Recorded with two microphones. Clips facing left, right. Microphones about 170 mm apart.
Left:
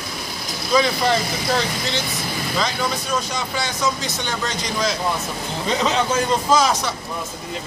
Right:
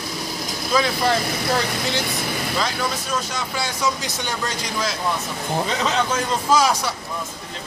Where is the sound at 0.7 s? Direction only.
Centre (ahead or behind).